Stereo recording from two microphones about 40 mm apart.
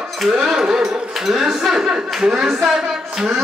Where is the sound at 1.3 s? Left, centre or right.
Centre.